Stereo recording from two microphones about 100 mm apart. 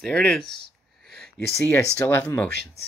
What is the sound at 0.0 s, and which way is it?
Speech, 5° left (ahead or behind).